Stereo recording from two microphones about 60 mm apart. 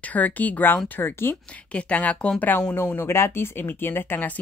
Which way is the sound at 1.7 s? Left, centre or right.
Centre.